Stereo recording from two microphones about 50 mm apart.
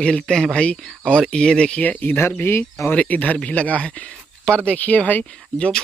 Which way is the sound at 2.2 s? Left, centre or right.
Left.